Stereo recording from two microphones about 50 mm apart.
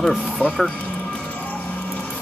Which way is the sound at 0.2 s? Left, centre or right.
Centre.